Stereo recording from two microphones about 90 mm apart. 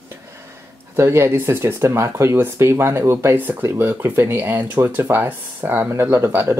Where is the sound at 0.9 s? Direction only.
30° right (ahead or behind).